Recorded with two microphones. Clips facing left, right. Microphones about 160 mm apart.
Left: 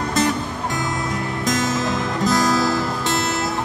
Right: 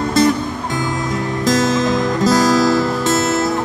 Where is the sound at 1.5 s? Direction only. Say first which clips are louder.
Right 6 dB; 90° right.